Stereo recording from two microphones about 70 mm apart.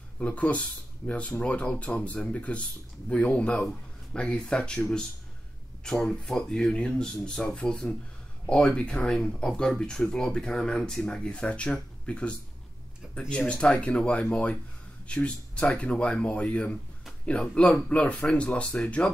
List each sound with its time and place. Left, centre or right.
0.2 s speech: centre
13.5 s speech: centre